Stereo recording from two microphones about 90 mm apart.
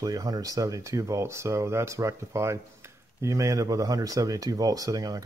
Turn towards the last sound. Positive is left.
turn(degrees=-40)  # may be behind; listen again after turning